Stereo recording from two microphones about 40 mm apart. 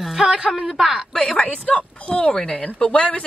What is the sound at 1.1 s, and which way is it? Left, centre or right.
Speech, centre.